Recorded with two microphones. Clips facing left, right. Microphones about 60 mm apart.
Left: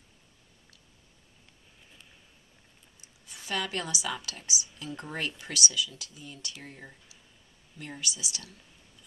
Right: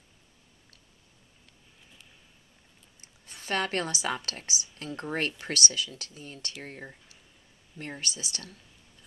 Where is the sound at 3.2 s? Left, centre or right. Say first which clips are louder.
Right 3 dB; right.